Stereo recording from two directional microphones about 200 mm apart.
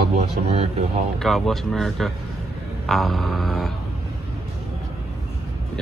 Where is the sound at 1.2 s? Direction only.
Centre (ahead or behind).